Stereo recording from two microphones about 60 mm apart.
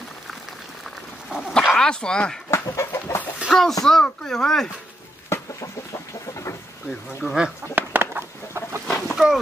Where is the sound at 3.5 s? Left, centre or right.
Centre.